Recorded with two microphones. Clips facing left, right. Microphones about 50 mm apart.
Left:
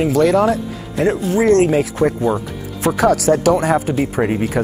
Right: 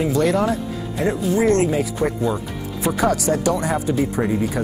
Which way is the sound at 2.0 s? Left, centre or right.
Left.